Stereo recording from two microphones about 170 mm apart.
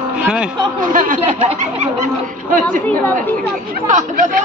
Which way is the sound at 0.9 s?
50° right (ahead or behind).